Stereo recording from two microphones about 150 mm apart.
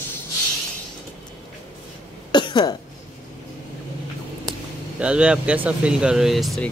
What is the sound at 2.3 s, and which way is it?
Cough, 30° left (ahead or behind).